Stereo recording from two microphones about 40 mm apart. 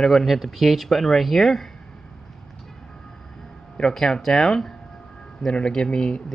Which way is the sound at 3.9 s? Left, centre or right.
Centre.